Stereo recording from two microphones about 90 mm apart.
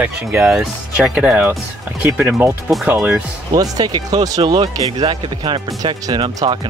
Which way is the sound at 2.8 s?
20° right (ahead or behind).